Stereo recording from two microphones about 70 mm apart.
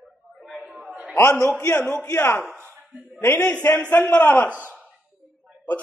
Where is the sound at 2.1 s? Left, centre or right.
Left.